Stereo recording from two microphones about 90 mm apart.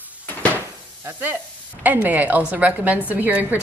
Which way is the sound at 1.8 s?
20° right (ahead or behind).